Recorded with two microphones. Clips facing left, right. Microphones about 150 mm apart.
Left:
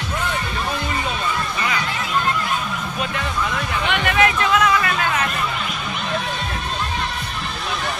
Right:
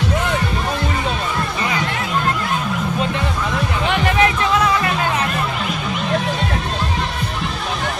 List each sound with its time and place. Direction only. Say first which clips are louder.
3.8 s music: right 2 dB; 35° right (ahead or behind)